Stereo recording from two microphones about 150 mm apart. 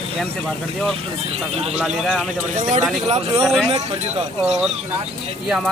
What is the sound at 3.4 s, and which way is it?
Speech, centre (ahead or behind).